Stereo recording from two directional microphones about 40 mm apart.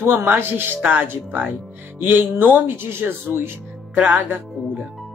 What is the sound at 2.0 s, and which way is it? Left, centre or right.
Speech, right.